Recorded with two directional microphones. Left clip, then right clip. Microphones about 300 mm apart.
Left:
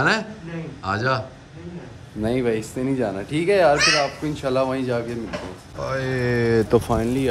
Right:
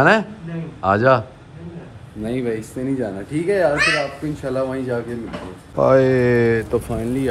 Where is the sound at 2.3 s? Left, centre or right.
Centre.